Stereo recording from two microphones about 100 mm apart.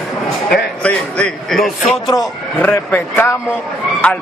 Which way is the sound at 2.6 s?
20° left (ahead or behind).